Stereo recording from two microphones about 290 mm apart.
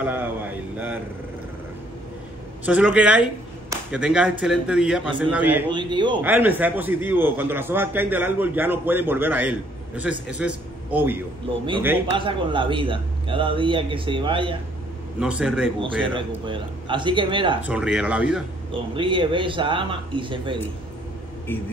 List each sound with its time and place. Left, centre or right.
0.0 s a sound: centre
2.6 s a man's voice: centre
15.1 s speech: centre
16.4 s a man's voice: centre
17.6 s speech: centre
18.7 s a man's voice: centre